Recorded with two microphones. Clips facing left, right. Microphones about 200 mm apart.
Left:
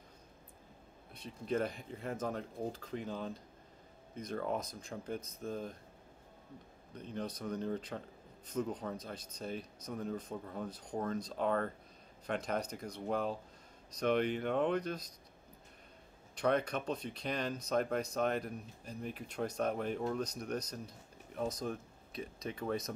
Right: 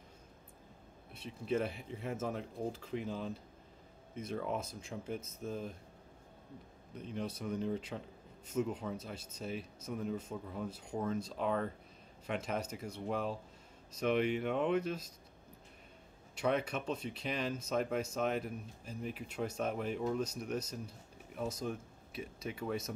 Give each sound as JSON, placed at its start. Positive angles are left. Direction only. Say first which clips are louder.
{"t": 1.1, "sound": "speech", "louder": "right 1 dB", "side_deg": -5}
{"t": 6.9, "sound": "speech", "louder": "right 1 dB", "side_deg": -5}
{"t": 8.5, "sound": "a man's voice", "louder": "right 2 dB", "side_deg": 35}
{"t": 8.8, "sound": "speech", "louder": "even", "side_deg": -5}
{"t": 16.3, "sound": "speech", "louder": "left 1 dB", "side_deg": -5}